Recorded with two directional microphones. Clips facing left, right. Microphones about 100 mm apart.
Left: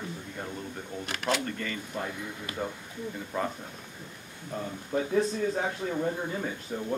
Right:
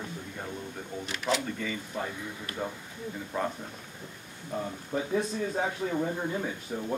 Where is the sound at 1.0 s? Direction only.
60° left (ahead or behind).